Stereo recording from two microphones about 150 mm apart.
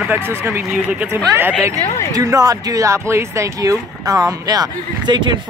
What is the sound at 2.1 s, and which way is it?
Speech, 25° right (ahead or behind).